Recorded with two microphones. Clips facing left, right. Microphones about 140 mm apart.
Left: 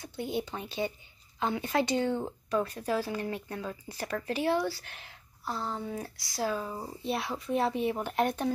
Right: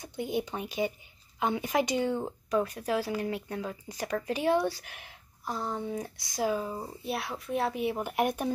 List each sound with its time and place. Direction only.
0.0 s speech: 15° right (ahead or behind)
6.8 s speech: centre (ahead or behind)